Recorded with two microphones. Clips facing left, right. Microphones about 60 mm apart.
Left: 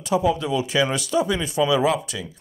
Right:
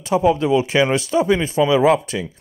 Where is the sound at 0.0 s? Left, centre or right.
Right.